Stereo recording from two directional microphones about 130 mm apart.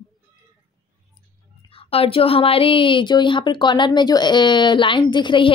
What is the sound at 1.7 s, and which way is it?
A woman's voice, 45° left (ahead or behind).